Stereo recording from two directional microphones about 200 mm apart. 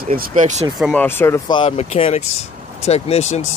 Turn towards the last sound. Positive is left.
turn(degrees=30)  # may be behind; listen again after turning